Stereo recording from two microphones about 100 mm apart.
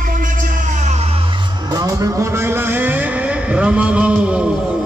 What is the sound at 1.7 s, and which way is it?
Speech, 35° right (ahead or behind).